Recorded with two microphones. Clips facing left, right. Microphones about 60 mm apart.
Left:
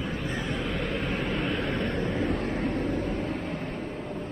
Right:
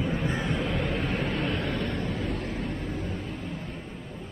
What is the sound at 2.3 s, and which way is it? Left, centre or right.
Vehicle, left.